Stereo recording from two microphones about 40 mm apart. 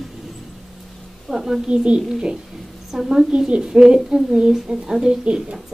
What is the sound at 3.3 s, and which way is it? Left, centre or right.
A child's voice, right.